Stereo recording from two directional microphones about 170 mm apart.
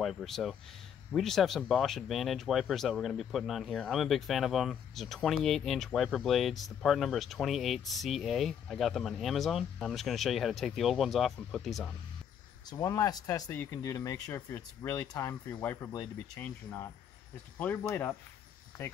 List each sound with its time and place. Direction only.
0.0 s speech: centre (ahead or behind)
12.6 s speech: 20° left (ahead or behind)